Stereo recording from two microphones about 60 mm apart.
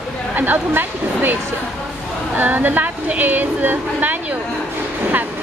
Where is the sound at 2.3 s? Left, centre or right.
Right.